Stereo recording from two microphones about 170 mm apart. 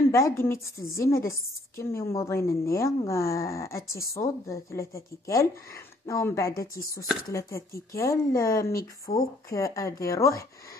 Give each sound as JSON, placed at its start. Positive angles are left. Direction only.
{"t": 0.1, "sound": "a woman's voice", "side_deg": 15}